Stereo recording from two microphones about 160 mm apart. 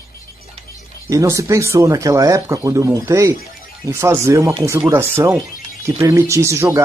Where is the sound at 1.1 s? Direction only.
20° right (ahead or behind).